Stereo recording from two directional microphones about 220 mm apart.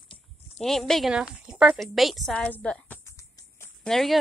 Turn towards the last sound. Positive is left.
turn(degrees=0)  # may be behind; listen again after turning